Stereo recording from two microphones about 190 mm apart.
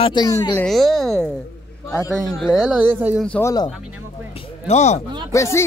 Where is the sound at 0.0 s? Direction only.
20° left (ahead or behind).